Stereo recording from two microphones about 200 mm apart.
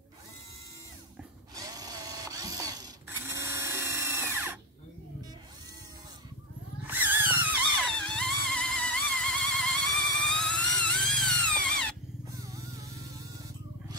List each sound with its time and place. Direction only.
1.5 s tools: 20° right (ahead or behind)
6.8 s a sound: 10° right (ahead or behind)
7.9 s vehicle: 5° left (ahead or behind)
12.3 s motorcycle: 15° right (ahead or behind)